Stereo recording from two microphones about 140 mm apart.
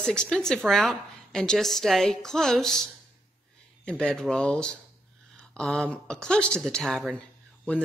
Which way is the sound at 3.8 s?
5° left (ahead or behind).